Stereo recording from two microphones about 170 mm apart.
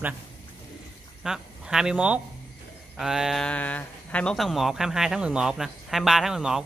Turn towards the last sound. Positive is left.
turn(degrees=-5)  # may be behind; listen again after turning